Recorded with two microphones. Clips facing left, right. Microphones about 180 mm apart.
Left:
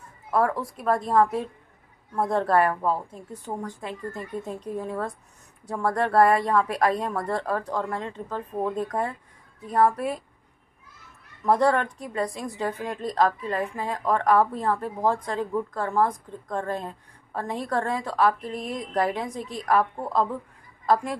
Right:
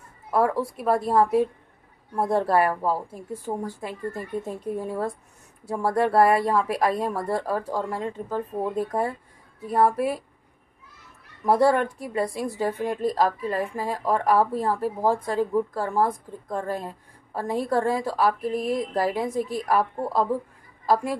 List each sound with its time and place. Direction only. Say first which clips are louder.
0.3 s a woman's voice: right 2 dB; 5° right (ahead or behind)
2.2 s a woman's voice: right 1 dB; 5° right (ahead or behind)
5.9 s a woman's voice: right 1 dB; 5° right (ahead or behind)
11.4 s a woman's voice: right 2 dB; 5° right (ahead or behind)